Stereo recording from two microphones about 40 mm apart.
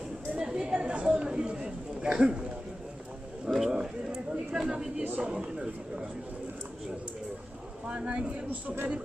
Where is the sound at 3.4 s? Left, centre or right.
Centre.